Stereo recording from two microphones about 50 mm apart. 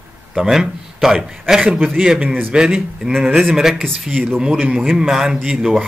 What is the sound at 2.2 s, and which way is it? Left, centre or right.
Speech, right.